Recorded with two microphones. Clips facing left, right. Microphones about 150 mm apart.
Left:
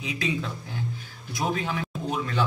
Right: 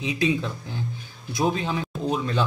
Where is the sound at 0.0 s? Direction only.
20° right (ahead or behind).